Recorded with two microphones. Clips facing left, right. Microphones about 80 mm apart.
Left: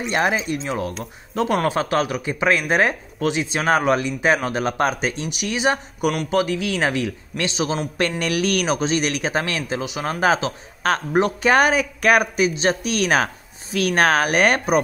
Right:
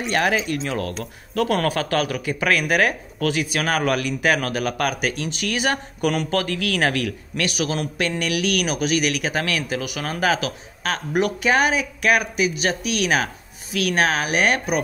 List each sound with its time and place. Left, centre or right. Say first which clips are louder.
0.1 s speech: even; left
8.2 s speech: even; left
11.5 s speech: left 5 dB; left